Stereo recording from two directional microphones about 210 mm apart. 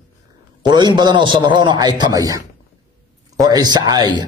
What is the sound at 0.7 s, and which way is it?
A man's voice, 20° right (ahead or behind).